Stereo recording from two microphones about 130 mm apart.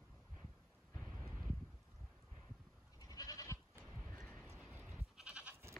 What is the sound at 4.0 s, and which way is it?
Horse, 15° left (ahead or behind).